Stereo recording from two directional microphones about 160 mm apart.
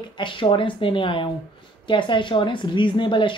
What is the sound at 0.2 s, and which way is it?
Speech, 30° left (ahead or behind).